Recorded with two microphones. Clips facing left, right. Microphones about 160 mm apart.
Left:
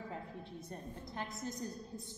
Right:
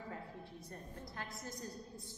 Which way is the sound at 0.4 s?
20° left (ahead or behind).